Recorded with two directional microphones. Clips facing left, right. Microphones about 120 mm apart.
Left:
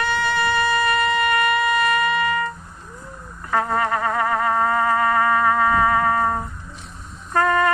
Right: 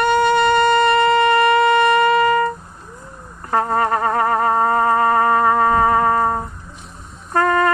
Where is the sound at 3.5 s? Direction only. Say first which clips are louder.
Right 3 dB; 35° right (ahead or behind).